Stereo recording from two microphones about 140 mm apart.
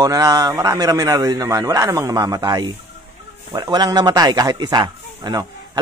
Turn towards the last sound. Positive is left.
turn(degrees=-30)  # may be behind; listen again after turning